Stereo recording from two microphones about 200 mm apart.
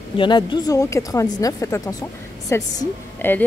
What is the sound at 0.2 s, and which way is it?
A woman's voice, 20° left (ahead or behind).